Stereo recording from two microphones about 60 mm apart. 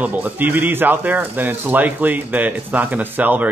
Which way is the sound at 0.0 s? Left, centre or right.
Right.